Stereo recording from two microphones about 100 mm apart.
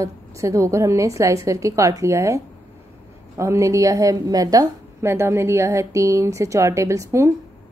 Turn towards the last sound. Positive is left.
turn(degrees=-30)  # may be behind; listen again after turning